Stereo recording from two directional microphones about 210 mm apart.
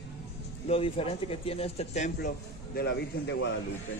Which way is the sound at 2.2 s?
50° left (ahead or behind).